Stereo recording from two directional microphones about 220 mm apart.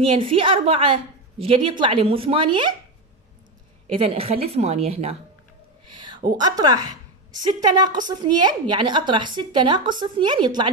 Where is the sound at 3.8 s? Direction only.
25° right (ahead or behind).